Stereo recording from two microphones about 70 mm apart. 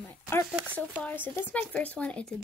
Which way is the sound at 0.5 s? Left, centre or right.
Right.